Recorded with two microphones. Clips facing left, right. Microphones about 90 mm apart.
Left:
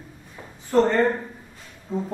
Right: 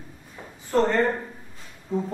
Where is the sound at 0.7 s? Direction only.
Centre (ahead or behind).